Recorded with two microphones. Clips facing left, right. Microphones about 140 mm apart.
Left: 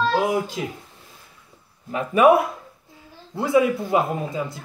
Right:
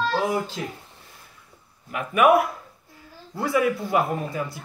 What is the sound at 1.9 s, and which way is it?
Speech, 30° left (ahead or behind).